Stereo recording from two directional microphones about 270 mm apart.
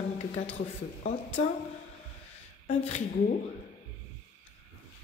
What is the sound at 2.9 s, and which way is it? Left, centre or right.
Speech, left.